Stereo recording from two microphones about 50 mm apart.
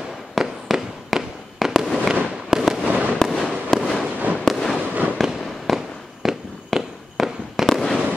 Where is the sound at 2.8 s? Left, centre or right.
Right.